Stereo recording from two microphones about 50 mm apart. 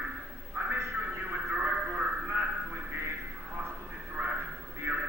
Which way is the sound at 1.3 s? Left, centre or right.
Right.